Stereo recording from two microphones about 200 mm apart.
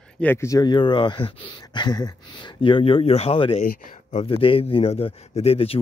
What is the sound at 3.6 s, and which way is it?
Speech, 45° left (ahead or behind).